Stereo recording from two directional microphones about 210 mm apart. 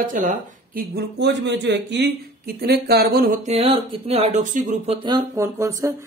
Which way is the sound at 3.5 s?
30° right (ahead or behind).